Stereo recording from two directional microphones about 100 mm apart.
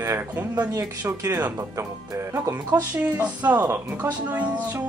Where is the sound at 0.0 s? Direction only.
25° right (ahead or behind).